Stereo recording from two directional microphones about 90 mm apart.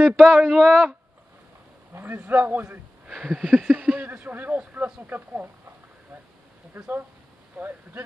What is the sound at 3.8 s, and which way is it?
Speech, 20° right (ahead or behind).